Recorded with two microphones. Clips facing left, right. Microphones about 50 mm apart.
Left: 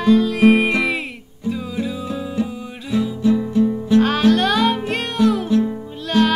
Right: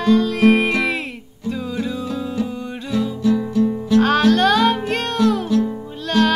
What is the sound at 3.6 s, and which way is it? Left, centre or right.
Music, left.